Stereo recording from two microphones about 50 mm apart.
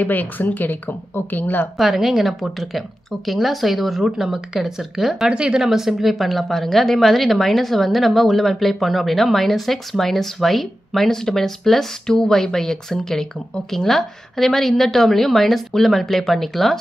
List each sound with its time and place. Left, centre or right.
0.0 s a woman's voice: left
1.8 s a woman's voice: centre
5.3 s speech: centre
5.6 s a woman's voice: centre